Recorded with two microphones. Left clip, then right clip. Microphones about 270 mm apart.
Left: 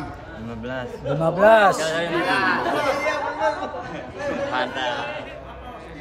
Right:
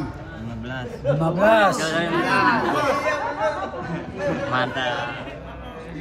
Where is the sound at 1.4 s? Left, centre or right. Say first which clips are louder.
Left 3 dB; centre.